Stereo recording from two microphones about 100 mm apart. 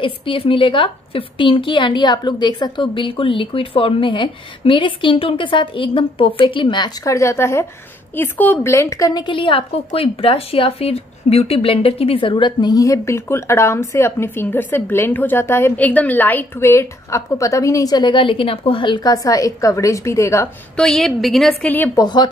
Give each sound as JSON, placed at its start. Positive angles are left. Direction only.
{"t": 0.0, "sound": "a woman's voice", "side_deg": 60}
{"t": 7.1, "sound": "speech", "side_deg": 30}
{"t": 8.7, "sound": "a woman's voice", "side_deg": 30}
{"t": 9.2, "sound": "a woman's voice", "side_deg": 60}
{"t": 12.8, "sound": "speech", "side_deg": 30}
{"t": 19.0, "sound": "a woman's voice", "side_deg": 35}
{"t": 20.7, "sound": "a woman's voice", "side_deg": 5}
{"t": 21.6, "sound": "speech", "side_deg": 20}
{"t": 21.9, "sound": "speech", "side_deg": 45}